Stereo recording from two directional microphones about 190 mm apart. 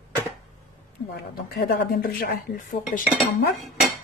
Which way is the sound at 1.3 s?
55° left (ahead or behind).